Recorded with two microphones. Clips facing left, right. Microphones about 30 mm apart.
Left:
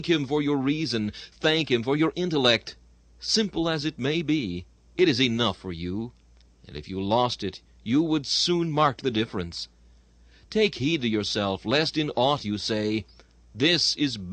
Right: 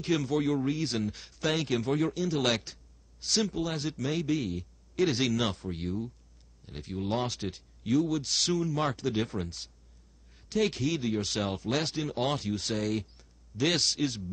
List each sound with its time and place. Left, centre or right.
0.2 s speech: left
0.7 s speech: left
3.5 s a man's voice: left
5.3 s speech: left
7.8 s speech: left
8.1 s speech: left
12.2 s speech: left
14.0 s speech: left